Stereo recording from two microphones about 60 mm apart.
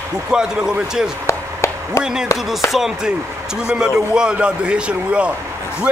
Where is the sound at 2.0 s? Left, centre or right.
Centre.